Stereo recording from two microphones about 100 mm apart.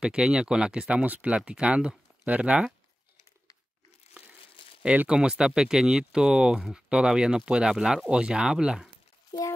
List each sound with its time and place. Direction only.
0.0 s speech: 10° right (ahead or behind)
4.8 s speech: 10° right (ahead or behind)
9.3 s a sound: 40° left (ahead or behind)